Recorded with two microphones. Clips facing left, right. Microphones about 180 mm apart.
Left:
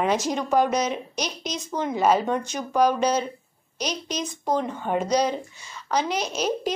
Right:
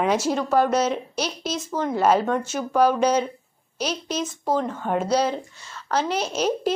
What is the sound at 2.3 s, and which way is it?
Speech, 5° right (ahead or behind).